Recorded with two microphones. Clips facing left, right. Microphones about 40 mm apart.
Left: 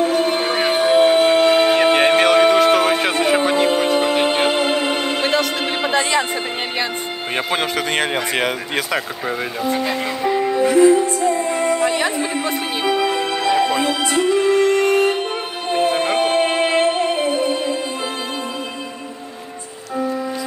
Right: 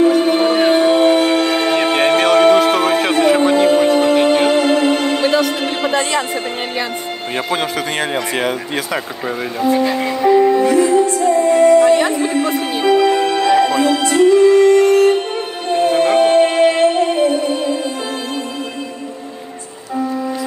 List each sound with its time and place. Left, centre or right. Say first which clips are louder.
0.0 s music: right 5 dB; centre
5.2 s music: right 3 dB; left
7.7 s music: even; left
10.2 s music: right 6 dB; centre
12.4 s music: right 4 dB; left
12.8 s music: right 7 dB; centre